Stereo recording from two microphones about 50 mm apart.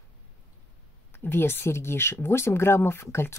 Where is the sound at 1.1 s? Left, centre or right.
Left.